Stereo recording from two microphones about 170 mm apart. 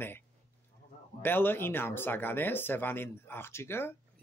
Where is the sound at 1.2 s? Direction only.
10° left (ahead or behind).